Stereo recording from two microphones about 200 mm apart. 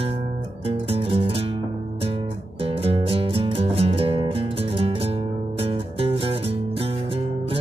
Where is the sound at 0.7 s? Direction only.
30° right (ahead or behind).